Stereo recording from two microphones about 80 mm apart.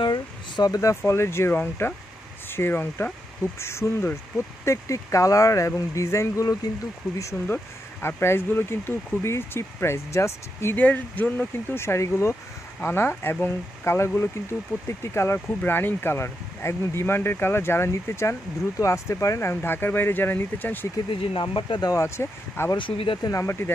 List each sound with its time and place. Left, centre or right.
0.0 s speech: left
7.4 s speech: left
10.8 s speech: left
19.5 s speech: left
21.1 s speech: left
21.8 s speech: left
22.8 s speech: left
23.3 s speech: left